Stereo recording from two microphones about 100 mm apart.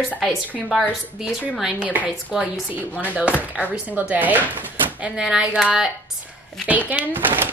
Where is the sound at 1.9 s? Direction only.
15° right (ahead or behind).